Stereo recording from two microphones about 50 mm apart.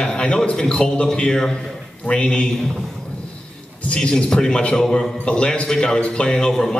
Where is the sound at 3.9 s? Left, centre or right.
Centre.